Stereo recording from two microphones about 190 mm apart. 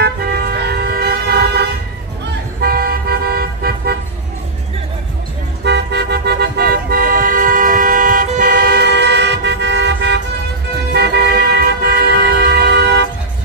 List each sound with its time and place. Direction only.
0.0 s vehicle: 55° right (ahead or behind)
2.6 s toot: 50° right (ahead or behind)
5.6 s toot: 65° right (ahead or behind)
10.9 s vehicle: 55° right (ahead or behind)